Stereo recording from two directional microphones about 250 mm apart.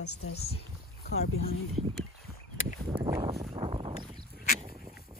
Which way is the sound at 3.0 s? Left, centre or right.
Centre.